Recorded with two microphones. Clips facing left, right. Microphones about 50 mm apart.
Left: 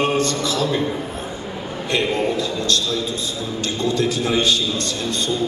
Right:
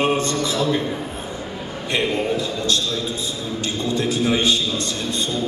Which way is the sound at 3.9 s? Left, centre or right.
Right.